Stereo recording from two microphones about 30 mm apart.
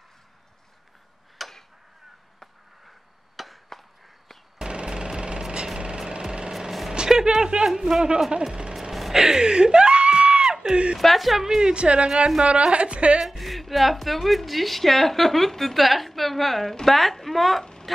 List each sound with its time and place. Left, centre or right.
1.4 s tick-tock: centre
3.4 s chop: centre
4.6 s a sound: right
6.9 s speech: right
9.1 s a sound: right
11.0 s a woman's voice: centre
11.4 s a woman's voice: right
11.7 s speech: right
13.2 s a woman's voice: centre
17.9 s dog: centre